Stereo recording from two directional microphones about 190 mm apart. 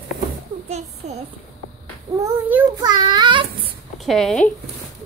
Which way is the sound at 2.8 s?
20° right (ahead or behind).